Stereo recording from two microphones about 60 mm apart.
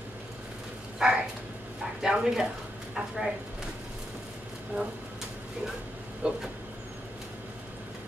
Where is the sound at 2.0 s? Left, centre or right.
Centre.